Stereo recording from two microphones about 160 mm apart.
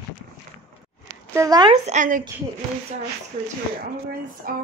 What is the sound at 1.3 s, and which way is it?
Speech, 25° right (ahead or behind).